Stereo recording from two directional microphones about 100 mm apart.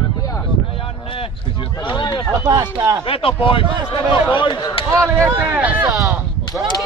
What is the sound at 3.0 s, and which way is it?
Speech, 65° left (ahead or behind).